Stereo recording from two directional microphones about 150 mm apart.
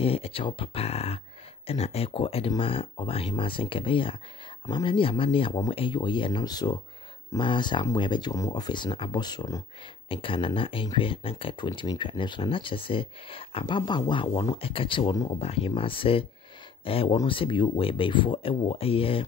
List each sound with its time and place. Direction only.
0.0 s speech: 40° left (ahead or behind)